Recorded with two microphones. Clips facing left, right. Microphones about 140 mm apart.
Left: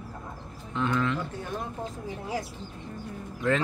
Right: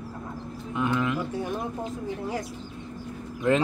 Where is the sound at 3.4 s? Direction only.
15° right (ahead or behind).